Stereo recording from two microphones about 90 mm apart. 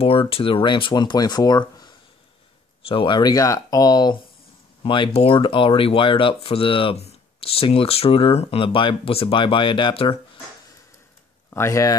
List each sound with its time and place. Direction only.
0.0 s speech: 90° left; by 2.0 s 55° left (ahead or behind)
2.9 s speech: 75° left (ahead or behind)
3.2 s speech: 45° left (ahead or behind)
4.8 s speech: 70° left (ahead or behind)
11.5 s speech: 35° left (ahead or behind)